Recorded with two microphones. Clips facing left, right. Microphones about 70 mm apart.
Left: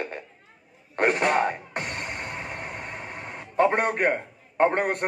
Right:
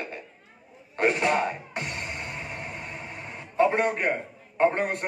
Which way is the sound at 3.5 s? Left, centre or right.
Left.